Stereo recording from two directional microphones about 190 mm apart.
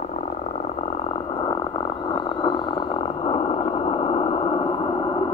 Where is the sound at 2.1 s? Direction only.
25° left (ahead or behind).